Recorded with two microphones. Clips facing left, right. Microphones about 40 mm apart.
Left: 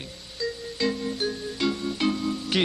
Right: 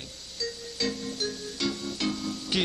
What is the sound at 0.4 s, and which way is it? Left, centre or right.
Music, left.